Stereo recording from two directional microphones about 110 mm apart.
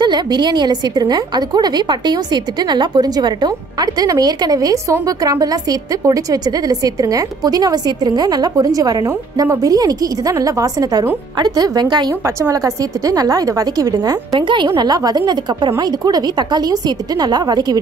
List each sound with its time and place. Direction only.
0.0 s a woman's voice: 45° right (ahead or behind)
12.4 s a woman's voice: 30° right (ahead or behind)